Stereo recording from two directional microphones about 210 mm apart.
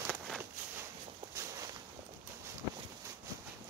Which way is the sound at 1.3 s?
15° right (ahead or behind).